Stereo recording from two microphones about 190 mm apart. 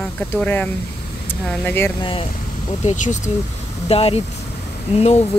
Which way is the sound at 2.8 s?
40° left (ahead or behind).